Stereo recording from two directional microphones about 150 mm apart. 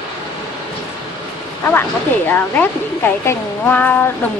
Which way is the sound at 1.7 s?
10° left (ahead or behind).